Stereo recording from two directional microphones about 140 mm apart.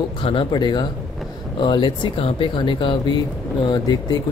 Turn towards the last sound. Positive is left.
turn(degrees=30)  # may be behind; listen again after turning